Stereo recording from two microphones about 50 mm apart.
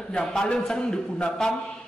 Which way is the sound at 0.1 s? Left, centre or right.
Centre.